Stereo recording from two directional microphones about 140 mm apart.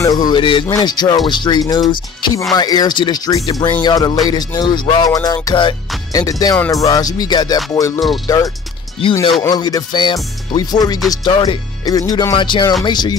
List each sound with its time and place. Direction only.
0.0 s speech: 30° left (ahead or behind)
2.5 s music: 30° left (ahead or behind)
12.8 s speech: 30° left (ahead or behind)